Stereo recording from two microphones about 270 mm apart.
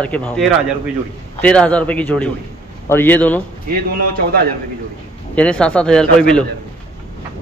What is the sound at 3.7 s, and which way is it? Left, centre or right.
Speech, right.